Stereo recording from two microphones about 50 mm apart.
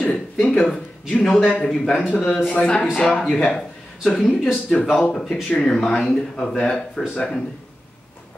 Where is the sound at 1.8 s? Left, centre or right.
Left.